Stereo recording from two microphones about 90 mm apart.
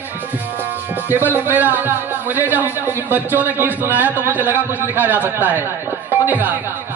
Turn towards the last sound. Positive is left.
turn(degrees=-20)  # may be behind; listen again after turning